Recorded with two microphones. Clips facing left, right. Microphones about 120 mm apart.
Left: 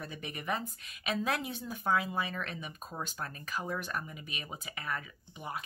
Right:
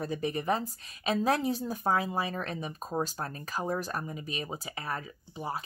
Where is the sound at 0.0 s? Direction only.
35° right (ahead or behind).